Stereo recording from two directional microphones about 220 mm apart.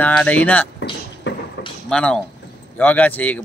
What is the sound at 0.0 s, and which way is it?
Speech, 5° left (ahead or behind).